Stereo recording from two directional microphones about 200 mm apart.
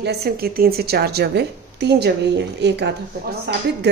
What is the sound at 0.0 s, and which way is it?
A woman's voice, 55° right (ahead or behind).